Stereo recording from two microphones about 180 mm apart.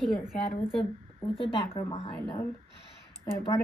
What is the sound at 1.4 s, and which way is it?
Speech, 35° left (ahead or behind).